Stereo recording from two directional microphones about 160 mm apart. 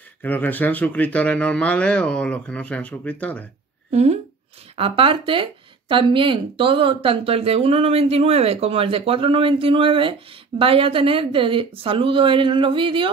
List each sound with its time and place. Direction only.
0.2 s speech: 10° left (ahead or behind)
3.9 s speech: 45° right (ahead or behind)